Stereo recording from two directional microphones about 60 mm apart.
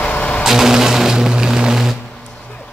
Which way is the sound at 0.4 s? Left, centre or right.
Centre.